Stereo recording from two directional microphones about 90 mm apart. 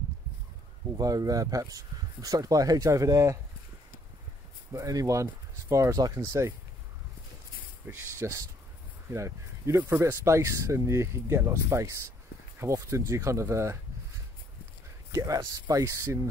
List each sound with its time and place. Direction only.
0.9 s speech: 45° right (ahead or behind)
4.7 s speech: 40° right (ahead or behind)
7.8 s speech: 30° right (ahead or behind)
15.0 s speech: 40° right (ahead or behind)